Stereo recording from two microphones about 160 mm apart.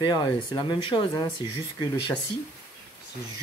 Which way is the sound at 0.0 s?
25° left (ahead or behind).